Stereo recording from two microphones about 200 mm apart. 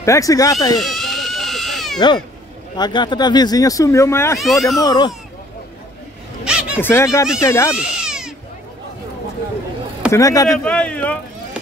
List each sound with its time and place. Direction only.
0.0 s speech: 15° left (ahead or behind)
0.7 s cat: centre (ahead or behind)
2.7 s speech: 20° left (ahead or behind)
4.4 s speech: centre (ahead or behind)
4.7 s speech: 20° left (ahead or behind)
6.4 s a sound: 5° right (ahead or behind)
6.8 s speech: 10° left (ahead or behind)
7.7 s cat: 5° right (ahead or behind)
10.1 s speech: 15° left (ahead or behind)
10.6 s speech: 5° left (ahead or behind)